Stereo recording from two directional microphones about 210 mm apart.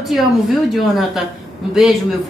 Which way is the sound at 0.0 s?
Centre (ahead or behind).